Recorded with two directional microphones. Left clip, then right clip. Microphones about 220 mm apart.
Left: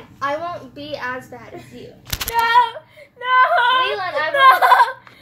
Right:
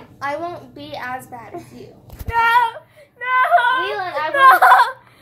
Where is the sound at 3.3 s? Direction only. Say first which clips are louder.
Left 1 dB; 20° right (ahead or behind).